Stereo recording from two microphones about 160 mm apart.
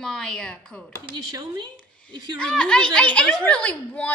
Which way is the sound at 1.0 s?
25° right (ahead or behind).